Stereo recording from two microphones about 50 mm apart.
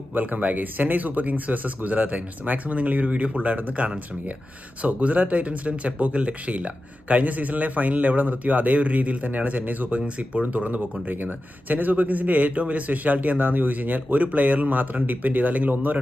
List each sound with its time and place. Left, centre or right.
0.1 s speech: right